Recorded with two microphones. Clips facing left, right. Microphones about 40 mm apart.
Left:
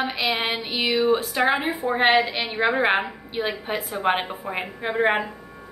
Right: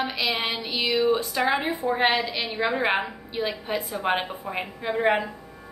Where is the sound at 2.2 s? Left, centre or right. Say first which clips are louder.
Left 5 dB; left.